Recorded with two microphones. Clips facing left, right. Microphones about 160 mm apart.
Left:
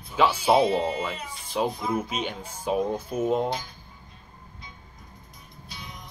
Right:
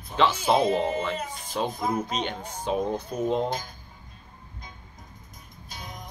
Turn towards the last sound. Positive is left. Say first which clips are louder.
# right 2 dB
turn(degrees=-45)  # may be behind; listen again after turning